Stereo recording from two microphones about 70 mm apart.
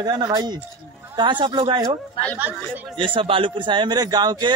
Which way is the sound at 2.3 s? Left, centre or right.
Right.